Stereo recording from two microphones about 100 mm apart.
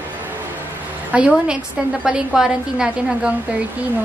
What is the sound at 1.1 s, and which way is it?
A woman's voice, 10° right (ahead or behind).